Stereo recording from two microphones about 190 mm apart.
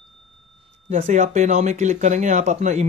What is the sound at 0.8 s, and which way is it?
Speech, 35° right (ahead or behind).